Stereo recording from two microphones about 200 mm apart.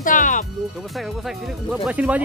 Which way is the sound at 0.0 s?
40° left (ahead or behind).